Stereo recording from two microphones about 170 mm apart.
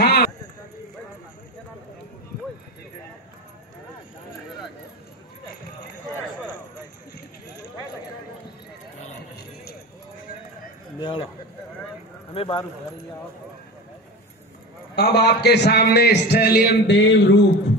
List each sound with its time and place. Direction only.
0.0 s clip-clop: 75° left (ahead or behind)
11.0 s speech: 30° left (ahead or behind)
12.4 s speech: 30° left (ahead or behind)
15.0 s a man's voice: 75° left (ahead or behind); by 17.5 s 90° left